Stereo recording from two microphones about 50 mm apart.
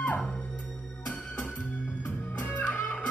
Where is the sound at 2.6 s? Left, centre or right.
Left.